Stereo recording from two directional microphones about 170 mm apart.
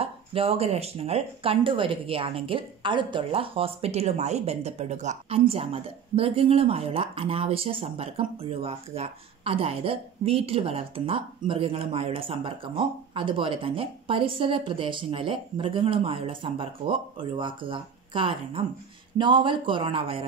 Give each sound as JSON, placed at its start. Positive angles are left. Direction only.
{"t": 0.0, "sound": "a woman's voice", "side_deg": -35}